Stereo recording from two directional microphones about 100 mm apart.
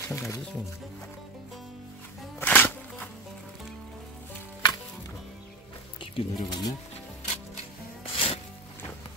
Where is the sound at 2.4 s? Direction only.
15° left (ahead or behind).